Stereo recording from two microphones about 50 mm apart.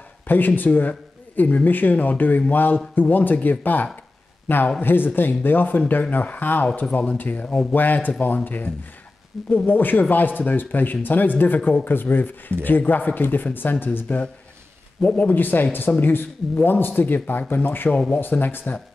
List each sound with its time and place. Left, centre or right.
0.3 s speech: left
9.7 s speech: left
15.0 s speech: left
15.2 s speech: left